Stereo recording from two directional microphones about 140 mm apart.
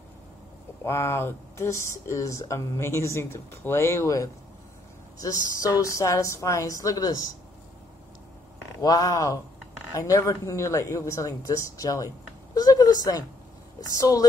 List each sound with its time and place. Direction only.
0.8 s speech: 20° left (ahead or behind)
8.8 s a woman's voice: 25° left (ahead or behind)